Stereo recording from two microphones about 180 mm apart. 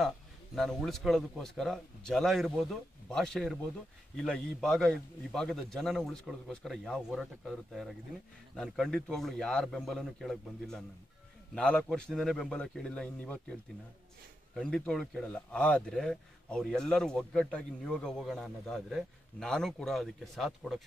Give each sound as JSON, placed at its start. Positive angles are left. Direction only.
{"t": 0.6, "sound": "speech", "side_deg": 0}